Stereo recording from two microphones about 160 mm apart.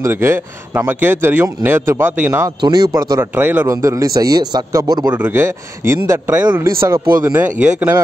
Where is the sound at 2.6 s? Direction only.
25° right (ahead or behind).